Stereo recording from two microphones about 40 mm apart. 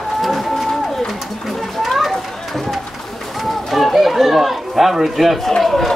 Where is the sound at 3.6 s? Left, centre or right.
Centre.